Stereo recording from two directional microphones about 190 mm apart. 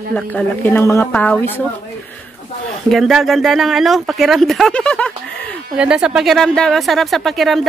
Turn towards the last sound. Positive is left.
turn(degrees=0)  # may be behind; listen again after turning